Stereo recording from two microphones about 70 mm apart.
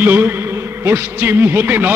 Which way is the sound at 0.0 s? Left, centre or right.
Right.